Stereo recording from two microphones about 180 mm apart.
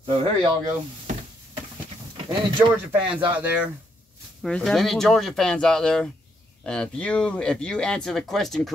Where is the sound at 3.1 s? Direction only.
10° right (ahead or behind).